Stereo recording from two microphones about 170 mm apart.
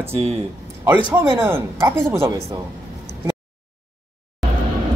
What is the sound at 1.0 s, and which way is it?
Speech, 15° right (ahead or behind).